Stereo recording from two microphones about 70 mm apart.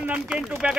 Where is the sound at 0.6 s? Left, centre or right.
Centre.